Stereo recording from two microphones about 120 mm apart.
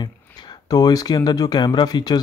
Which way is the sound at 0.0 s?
35° left (ahead or behind).